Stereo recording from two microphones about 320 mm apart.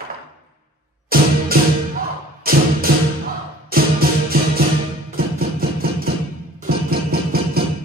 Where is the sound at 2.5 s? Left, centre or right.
Right.